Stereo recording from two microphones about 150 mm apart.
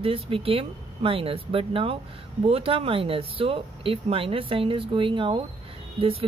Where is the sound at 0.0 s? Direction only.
40° right (ahead or behind).